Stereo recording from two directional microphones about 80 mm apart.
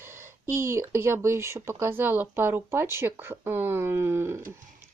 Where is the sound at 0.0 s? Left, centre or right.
Right.